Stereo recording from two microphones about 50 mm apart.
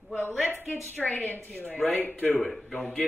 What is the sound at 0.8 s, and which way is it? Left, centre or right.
Speech, left.